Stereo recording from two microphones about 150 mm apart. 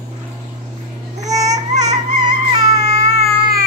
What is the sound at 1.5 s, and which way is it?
Baby cry, 50° right (ahead or behind).